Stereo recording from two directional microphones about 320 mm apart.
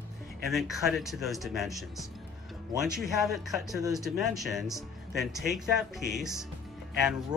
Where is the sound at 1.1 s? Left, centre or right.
Centre.